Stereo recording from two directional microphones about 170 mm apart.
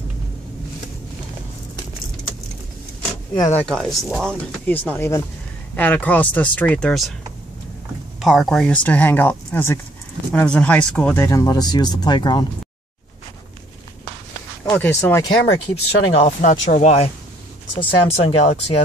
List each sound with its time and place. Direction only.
3.3 s speech: 15° left (ahead or behind)
3.6 s speech: centre (ahead or behind)
8.2 s speech: centre (ahead or behind); by 12.4 s 25° left (ahead or behind)
14.6 s speech: 15° left (ahead or behind)
15.7 s speech: 35° left (ahead or behind)